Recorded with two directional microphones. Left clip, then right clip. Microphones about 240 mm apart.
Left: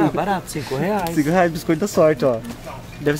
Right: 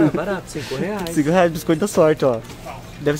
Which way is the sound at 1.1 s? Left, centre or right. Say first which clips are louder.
Right 4 dB; centre.